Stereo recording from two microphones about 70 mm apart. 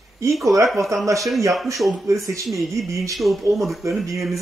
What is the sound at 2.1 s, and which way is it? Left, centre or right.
Speech, right.